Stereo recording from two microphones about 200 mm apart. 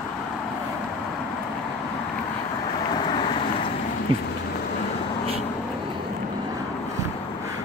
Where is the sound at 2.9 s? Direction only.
25° left (ahead or behind).